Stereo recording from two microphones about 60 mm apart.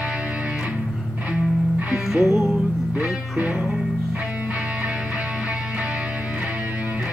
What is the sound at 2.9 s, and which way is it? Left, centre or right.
Music, right.